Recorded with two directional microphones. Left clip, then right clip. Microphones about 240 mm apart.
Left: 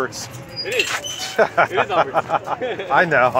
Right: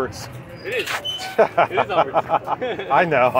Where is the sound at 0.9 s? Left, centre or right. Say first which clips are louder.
Even; centre.